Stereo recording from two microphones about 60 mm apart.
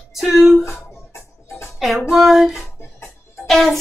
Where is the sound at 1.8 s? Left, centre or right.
Centre.